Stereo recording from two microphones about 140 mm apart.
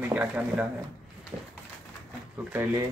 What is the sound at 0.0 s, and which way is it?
Speech, 10° right (ahead or behind).